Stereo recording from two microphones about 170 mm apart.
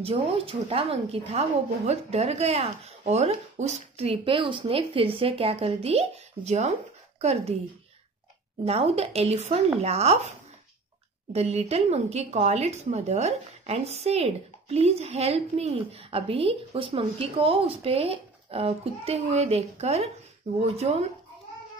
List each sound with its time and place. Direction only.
0.0 s a woman's voice: 35° right (ahead or behind)
8.6 s speech: 35° right (ahead or behind)
11.3 s speech: 35° right (ahead or behind)